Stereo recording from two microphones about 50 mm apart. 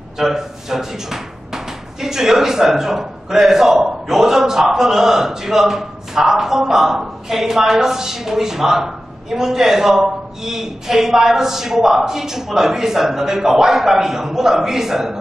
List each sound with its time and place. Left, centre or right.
0.2 s speech: centre